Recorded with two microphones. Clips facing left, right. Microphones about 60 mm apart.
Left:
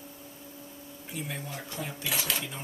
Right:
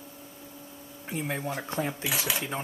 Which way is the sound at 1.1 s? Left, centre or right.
Right.